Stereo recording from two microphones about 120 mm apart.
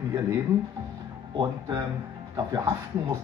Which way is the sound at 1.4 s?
35° right (ahead or behind).